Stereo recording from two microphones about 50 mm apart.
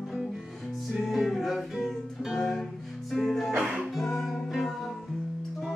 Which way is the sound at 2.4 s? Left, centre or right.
Centre.